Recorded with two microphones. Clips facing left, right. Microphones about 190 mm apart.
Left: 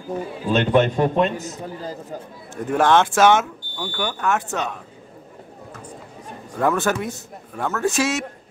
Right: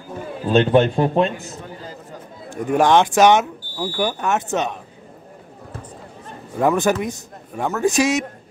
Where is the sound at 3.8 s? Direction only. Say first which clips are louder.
Right 3 dB; 25° right (ahead or behind).